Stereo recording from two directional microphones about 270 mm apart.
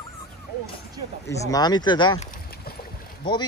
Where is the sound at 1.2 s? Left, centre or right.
Centre.